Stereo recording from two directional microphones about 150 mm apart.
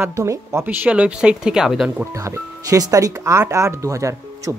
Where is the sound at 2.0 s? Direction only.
20° right (ahead or behind).